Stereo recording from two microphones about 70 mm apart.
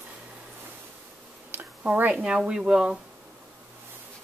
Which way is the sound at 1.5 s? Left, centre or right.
Right.